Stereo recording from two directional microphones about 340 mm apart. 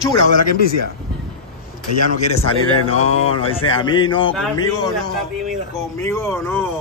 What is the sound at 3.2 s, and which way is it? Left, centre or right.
Speech, centre.